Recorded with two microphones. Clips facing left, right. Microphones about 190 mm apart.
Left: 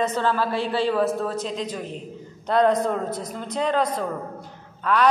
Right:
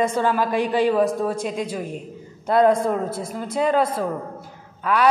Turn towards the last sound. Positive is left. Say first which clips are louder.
# right 1 dB
turn(degrees=-10)  # may be behind; listen again after turning